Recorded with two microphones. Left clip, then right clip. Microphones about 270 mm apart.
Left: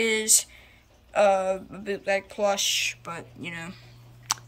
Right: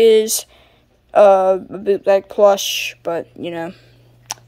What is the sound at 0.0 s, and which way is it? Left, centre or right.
Speech, centre.